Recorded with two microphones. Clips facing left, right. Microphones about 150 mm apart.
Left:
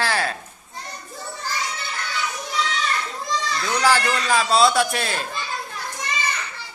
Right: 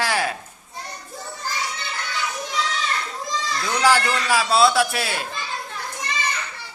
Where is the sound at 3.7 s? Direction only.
10° right (ahead or behind).